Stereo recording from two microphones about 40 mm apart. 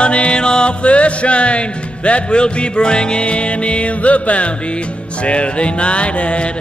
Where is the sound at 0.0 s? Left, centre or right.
Left.